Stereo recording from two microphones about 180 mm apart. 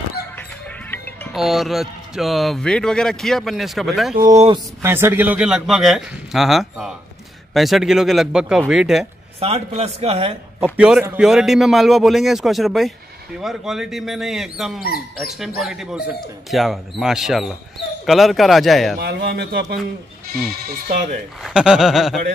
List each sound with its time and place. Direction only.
0.4 s music: 10° left (ahead or behind)
1.3 s speech: centre (ahead or behind)
4.2 s speech: 40° right (ahead or behind)
4.8 s speech: 15° right (ahead or behind)
9.4 s a man's voice: 35° right (ahead or behind)
10.6 s speech: 5° right (ahead or behind)
18.9 s a man's voice: 65° right (ahead or behind)
21.4 s speech: 5° right (ahead or behind)